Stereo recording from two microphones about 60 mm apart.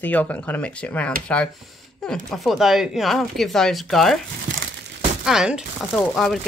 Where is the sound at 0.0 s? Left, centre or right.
Left.